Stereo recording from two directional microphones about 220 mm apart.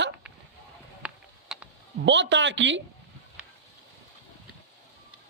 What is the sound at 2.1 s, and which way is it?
Speech, 55° right (ahead or behind).